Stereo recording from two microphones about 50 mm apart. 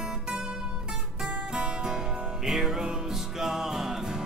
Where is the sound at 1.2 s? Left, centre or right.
Centre.